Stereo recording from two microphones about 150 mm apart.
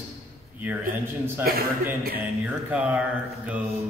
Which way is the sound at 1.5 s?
90° right.